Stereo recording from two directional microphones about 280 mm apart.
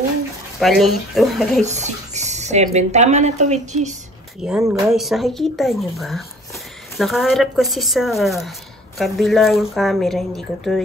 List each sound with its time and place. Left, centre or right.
0.6 s speech: centre
1.6 s speech: right
4.4 s speech: centre